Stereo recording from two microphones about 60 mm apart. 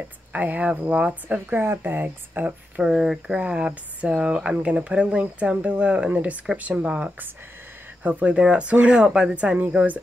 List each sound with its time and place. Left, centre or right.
0.3 s speech: right
2.8 s speech: centre